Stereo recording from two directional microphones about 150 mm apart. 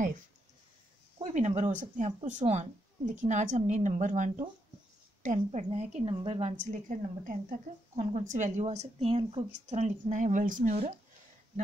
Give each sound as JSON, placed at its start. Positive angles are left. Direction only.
{"t": 1.2, "sound": "a woman's voice", "side_deg": -50}